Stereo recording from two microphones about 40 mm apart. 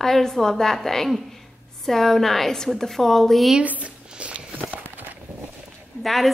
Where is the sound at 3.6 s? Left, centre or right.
Right.